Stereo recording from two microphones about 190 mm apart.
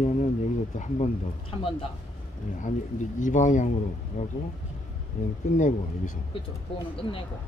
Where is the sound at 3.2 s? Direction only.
40° left (ahead or behind).